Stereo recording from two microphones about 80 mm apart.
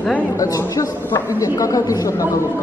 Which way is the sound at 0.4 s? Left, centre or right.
Left.